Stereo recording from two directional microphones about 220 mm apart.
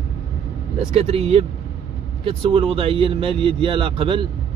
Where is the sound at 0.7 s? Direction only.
25° right (ahead or behind).